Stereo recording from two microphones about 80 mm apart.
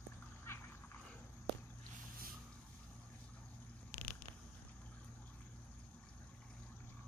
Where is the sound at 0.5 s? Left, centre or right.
Left.